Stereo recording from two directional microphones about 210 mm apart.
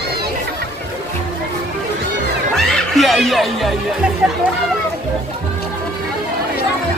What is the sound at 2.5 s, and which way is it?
Music, centre (ahead or behind).